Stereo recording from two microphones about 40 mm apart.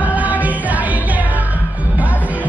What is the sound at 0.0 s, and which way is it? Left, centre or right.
Music, right.